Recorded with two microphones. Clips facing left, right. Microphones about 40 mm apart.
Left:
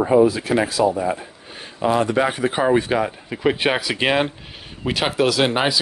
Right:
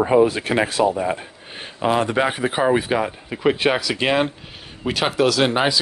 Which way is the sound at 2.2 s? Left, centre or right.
Centre.